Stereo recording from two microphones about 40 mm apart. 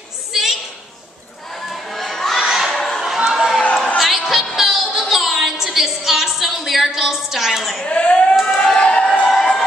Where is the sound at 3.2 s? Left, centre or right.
Centre.